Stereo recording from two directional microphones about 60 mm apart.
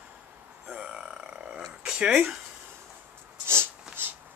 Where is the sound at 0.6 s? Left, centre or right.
Centre.